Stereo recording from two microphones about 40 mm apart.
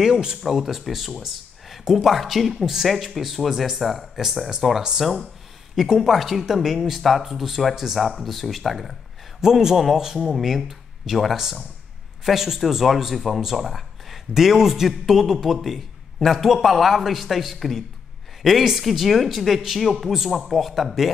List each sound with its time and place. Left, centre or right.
0.0 s speech: centre
0.4 s speech: centre
5.8 s speech: centre
8.0 s speech: centre
9.4 s a man's voice: centre
10.2 s a man's voice: centre